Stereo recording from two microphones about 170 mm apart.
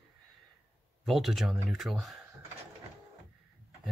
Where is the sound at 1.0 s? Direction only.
Centre (ahead or behind).